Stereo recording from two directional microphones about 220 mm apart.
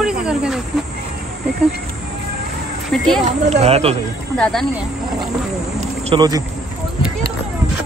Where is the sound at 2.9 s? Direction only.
Centre (ahead or behind).